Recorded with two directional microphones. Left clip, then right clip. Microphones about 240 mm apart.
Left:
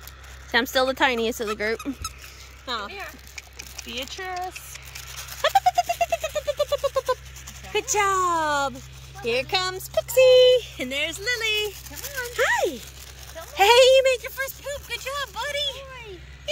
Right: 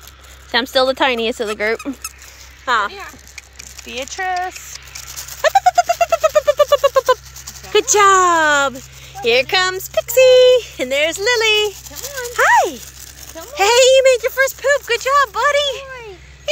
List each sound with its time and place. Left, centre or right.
0.5 s speech: centre
2.9 s speech: centre
4.1 s speech: centre
5.4 s a sound: centre
7.7 s speech: centre
11.9 s a sound: right
12.4 s rattle: centre
13.6 s speech: centre